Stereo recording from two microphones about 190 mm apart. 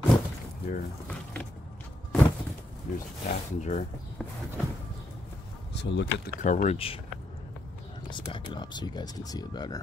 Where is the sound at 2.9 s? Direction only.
45° left (ahead or behind).